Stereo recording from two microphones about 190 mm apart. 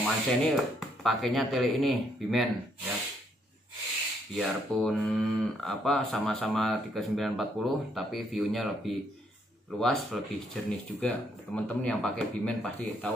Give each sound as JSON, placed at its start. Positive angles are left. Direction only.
{"t": 0.0, "sound": "speech", "side_deg": 0}
{"t": 4.4, "sound": "speech", "side_deg": 0}